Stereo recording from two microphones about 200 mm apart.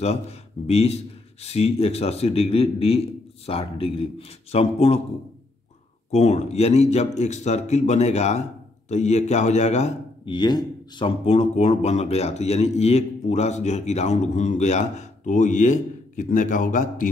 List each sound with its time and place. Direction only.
0.0 s a man's voice: 30° left (ahead or behind)
6.1 s a man's voice: 35° left (ahead or behind)